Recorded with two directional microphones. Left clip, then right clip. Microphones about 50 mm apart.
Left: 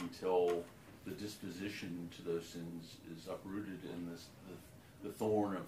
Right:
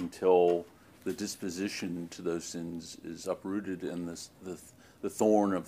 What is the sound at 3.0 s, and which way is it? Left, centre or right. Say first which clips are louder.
Speech: right 12 dB; right.